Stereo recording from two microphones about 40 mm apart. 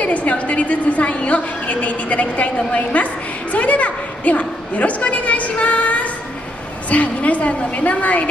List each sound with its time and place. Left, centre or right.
0.0 s a woman's voice: left
3.5 s a sound: left
6.9 s a woman's voice: left